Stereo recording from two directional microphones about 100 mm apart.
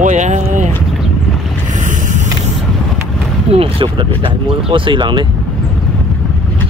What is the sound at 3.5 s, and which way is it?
Speech, 65° right (ahead or behind).